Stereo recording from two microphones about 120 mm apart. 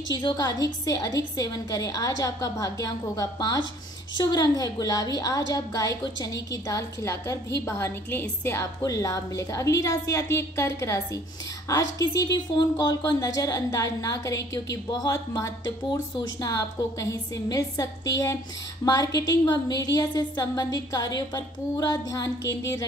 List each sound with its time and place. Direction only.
0.1 s a woman's voice: 35° left (ahead or behind)